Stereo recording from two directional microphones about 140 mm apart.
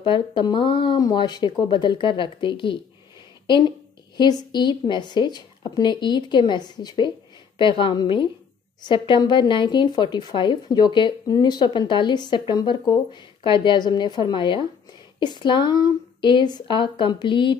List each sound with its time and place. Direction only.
0.0 s speech: 35° left (ahead or behind)